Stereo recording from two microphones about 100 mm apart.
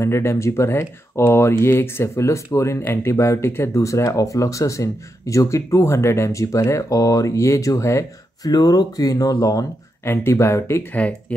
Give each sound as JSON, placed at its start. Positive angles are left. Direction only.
{"t": 0.0, "sound": "speech", "side_deg": 25}